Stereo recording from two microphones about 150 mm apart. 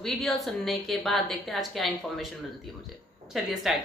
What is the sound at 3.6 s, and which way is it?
Speech, centre (ahead or behind).